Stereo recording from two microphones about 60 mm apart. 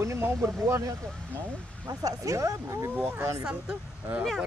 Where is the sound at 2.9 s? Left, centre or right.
Right.